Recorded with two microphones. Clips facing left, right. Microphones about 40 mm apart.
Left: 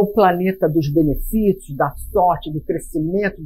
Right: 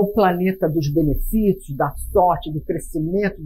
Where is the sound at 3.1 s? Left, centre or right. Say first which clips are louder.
Even; left.